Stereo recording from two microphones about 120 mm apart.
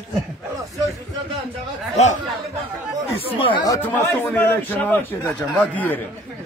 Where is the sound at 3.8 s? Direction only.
15° left (ahead or behind).